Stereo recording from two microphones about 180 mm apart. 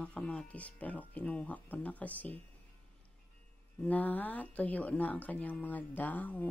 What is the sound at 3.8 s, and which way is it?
Speech, 10° left (ahead or behind).